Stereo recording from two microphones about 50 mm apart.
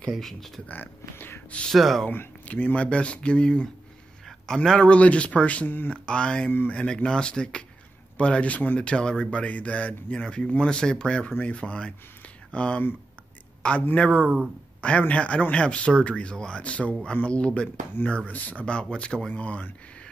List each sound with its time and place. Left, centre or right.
0.1 s speech: centre
0.7 s speech: left
1.7 s speech: centre
2.4 s speech: left
5.7 s speech: left
6.0 s speech: centre
10.2 s speech: centre
13.6 s a sound: left
13.9 s speech: left
18.7 s speech: centre
19.3 s speech: left